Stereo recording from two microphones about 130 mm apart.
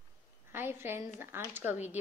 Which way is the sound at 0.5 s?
15° right (ahead or behind).